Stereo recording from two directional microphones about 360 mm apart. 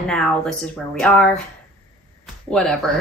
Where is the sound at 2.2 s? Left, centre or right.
Centre.